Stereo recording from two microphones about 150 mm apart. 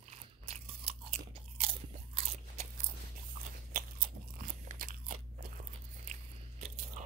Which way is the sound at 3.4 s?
70° right (ahead or behind).